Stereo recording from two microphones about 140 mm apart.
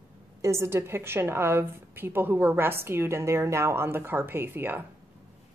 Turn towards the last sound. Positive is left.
turn(degrees=-15)  # may be behind; listen again after turning